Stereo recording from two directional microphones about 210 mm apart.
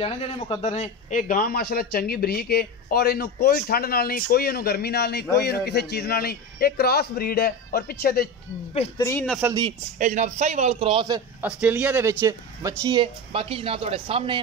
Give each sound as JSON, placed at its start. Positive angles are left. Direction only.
{"t": 0.0, "sound": "a man's voice", "side_deg": 30}
{"t": 9.0, "sound": "speech", "side_deg": 5}
{"t": 9.4, "sound": "speech", "side_deg": -20}
{"t": 9.9, "sound": "a man's voice", "side_deg": -35}
{"t": 11.4, "sound": "speech", "side_deg": -5}